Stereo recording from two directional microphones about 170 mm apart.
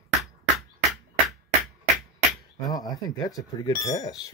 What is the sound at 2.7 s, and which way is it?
Speech, 20° left (ahead or behind).